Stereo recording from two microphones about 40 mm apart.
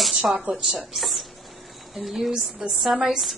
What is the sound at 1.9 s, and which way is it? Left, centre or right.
A woman's voice, centre.